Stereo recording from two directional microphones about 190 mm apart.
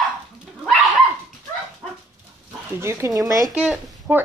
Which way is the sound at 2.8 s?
15° right (ahead or behind).